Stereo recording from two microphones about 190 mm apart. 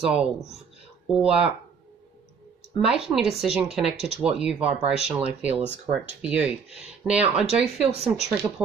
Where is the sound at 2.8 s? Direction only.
5° right (ahead or behind).